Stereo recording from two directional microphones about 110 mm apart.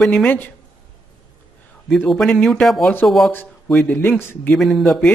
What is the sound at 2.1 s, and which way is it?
Speech, 5° left (ahead or behind).